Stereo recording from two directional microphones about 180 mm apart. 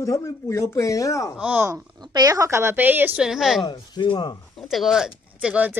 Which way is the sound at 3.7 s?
25° left (ahead or behind).